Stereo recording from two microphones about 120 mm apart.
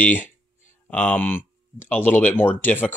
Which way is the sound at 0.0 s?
15° left (ahead or behind).